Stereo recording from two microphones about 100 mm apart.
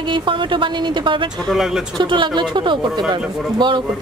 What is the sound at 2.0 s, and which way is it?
A woman's voice, 50° right (ahead or behind).